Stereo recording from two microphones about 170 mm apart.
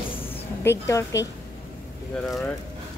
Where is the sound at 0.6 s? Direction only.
15° left (ahead or behind).